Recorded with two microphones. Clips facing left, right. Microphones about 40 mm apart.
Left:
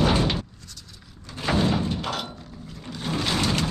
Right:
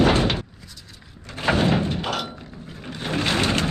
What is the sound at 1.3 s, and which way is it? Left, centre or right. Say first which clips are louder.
Door: right 3 dB; right.